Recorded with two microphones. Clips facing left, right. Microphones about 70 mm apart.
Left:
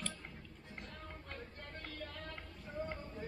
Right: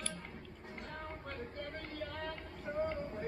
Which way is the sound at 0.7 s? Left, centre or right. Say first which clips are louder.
Right 5 dB; right.